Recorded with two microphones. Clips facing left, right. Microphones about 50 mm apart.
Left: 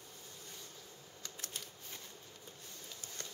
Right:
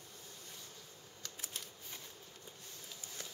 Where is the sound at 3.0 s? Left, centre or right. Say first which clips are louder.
Even; centre.